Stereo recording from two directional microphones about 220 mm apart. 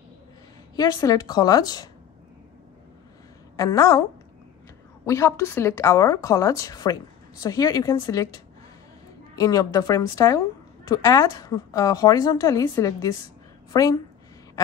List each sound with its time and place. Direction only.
0.7 s a woman's voice: 15° left (ahead or behind)
3.5 s a woman's voice: 15° left (ahead or behind)
5.0 s a woman's voice: 15° left (ahead or behind)
9.4 s a woman's voice: 15° left (ahead or behind)